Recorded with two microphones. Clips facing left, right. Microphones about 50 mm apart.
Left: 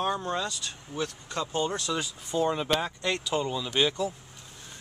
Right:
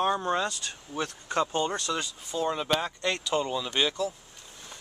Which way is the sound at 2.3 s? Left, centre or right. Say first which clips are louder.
Left 3 dB; centre.